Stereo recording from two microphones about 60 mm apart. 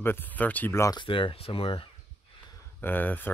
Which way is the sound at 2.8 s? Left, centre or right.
Left.